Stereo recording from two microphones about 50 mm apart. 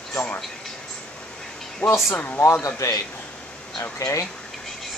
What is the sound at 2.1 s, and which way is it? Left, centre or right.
Speech, left.